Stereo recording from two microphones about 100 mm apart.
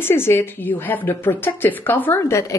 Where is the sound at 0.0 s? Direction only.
25° left (ahead or behind).